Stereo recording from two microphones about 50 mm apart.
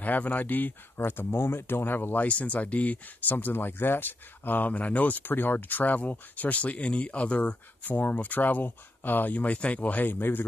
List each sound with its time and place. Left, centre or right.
0.0 s speech: left
2.2 s speech: left
5.2 s speech: left
7.8 s speech: left